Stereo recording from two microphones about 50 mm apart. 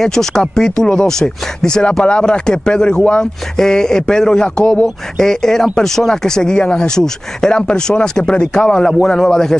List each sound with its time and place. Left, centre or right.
0.0 s speech: centre